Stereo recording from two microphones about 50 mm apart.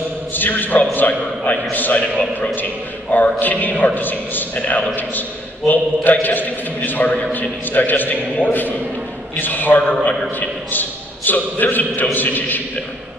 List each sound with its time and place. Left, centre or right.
0.3 s a man's voice: left
3.1 s a man's voice: left